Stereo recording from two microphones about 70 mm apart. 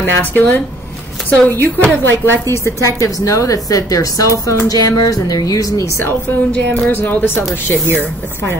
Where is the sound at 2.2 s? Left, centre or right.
Left.